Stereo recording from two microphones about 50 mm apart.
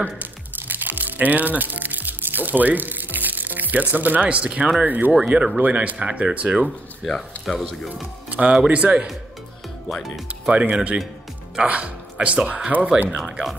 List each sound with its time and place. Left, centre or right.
0.0 s music: right
5.2 s speech: centre
5.6 s speech: right
7.4 s speech: centre
7.9 s speech: right
9.8 s speech: centre
10.5 s speech: right